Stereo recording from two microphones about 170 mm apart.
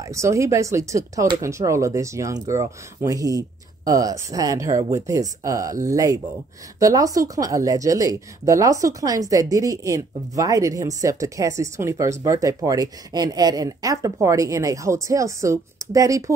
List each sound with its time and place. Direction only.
0.0 s speech: 15° right (ahead or behind)